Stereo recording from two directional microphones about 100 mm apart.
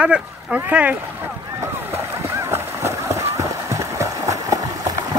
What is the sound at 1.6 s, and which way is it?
Run, 25° right (ahead or behind).